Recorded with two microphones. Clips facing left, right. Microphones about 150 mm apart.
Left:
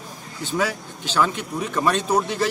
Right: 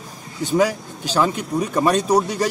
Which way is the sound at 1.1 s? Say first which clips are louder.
Right 3 dB; 15° right (ahead or behind).